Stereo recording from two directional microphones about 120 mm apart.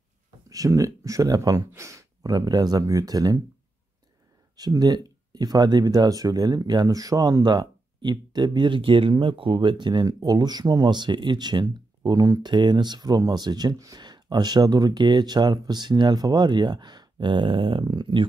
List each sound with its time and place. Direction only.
0.5 s speech: 30° right (ahead or behind)
4.6 s speech: 30° right (ahead or behind)